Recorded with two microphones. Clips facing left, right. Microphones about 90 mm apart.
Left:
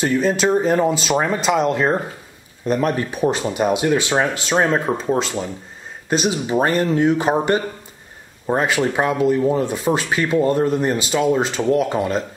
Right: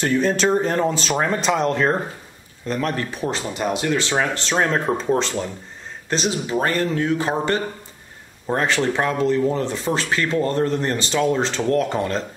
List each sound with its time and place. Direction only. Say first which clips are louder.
0.0 s speech: left 1 dB; 5° left (ahead or behind)
2.6 s speech: left 4 dB; 15° left (ahead or behind)